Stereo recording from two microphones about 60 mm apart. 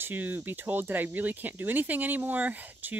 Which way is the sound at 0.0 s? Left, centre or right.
Right.